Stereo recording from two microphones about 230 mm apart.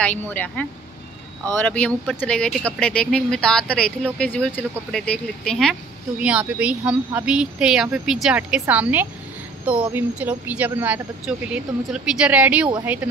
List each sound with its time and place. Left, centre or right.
0.0 s speech: centre